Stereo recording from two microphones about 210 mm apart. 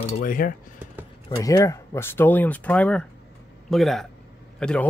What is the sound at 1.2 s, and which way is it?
Speech, 15° left (ahead or behind).